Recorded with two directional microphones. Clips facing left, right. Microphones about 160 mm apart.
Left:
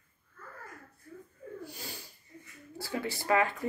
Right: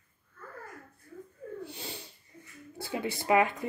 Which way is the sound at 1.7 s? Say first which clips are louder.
Right 3 dB; 25° right (ahead or behind).